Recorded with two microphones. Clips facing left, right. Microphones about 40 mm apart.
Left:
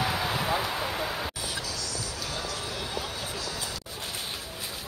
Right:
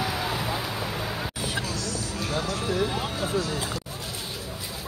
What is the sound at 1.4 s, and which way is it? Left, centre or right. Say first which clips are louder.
Music: right 4 dB; right.